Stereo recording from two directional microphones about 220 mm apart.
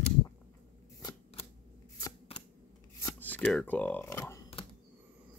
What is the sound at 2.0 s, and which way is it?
Shuffling cards, 15° left (ahead or behind).